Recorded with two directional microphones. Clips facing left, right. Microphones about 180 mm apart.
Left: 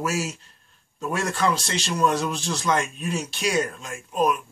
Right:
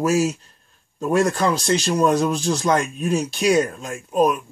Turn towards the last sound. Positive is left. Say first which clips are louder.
# right 5 dB
turn(degrees=-45)  # may be behind; listen again after turning